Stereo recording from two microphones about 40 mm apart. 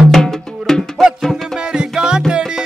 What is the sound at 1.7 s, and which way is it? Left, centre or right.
Music, centre.